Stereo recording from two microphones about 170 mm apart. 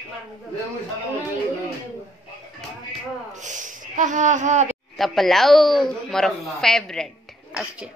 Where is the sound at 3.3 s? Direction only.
45° right (ahead or behind).